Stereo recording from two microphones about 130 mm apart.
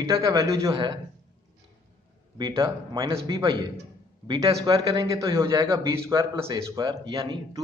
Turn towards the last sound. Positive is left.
turn(degrees=-30)  # may be behind; listen again after turning